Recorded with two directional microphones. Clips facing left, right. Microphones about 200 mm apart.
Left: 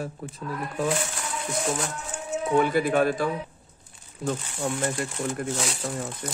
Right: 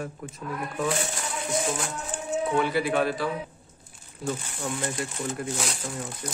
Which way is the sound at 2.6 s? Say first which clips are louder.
Left 3 dB; 45° left (ahead or behind).